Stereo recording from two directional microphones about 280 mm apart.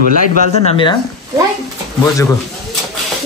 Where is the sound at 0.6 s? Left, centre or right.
Centre.